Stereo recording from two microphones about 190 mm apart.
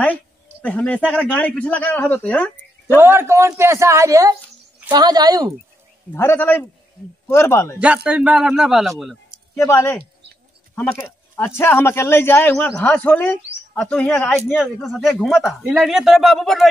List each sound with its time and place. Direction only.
0.0 s speech: 10° left (ahead or behind)
3.0 s a man's voice: 10° right (ahead or behind)
6.1 s speech: 10° left (ahead or behind)
7.8 s a man's voice: 5° right (ahead or behind)
9.6 s speech: 15° left (ahead or behind)
14.6 s a man's voice: centre (ahead or behind)